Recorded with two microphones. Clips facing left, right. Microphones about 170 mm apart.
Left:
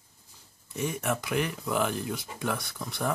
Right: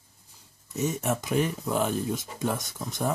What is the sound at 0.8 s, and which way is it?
Speech, 25° right (ahead or behind).